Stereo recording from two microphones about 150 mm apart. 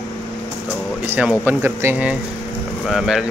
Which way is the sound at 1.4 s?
15° right (ahead or behind).